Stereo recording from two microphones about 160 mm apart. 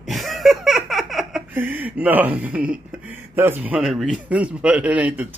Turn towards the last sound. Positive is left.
turn(degrees=-10)  # may be behind; listen again after turning